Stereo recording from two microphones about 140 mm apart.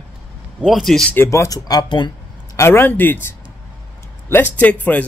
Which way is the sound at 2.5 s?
15° left (ahead or behind).